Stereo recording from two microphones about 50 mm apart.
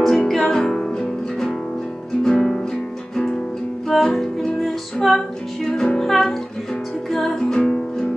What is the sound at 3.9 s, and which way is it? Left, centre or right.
Music, centre.